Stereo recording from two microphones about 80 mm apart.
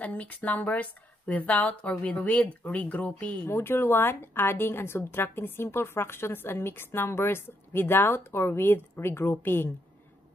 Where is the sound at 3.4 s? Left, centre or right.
Left.